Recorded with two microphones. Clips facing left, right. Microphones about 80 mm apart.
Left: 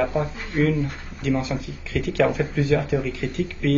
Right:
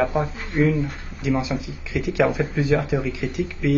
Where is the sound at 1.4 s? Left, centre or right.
Centre.